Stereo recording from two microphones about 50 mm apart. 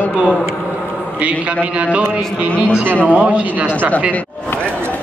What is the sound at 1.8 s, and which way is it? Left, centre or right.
Speech, right.